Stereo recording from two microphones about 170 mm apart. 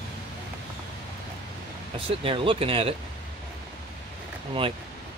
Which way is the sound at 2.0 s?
30° right (ahead or behind).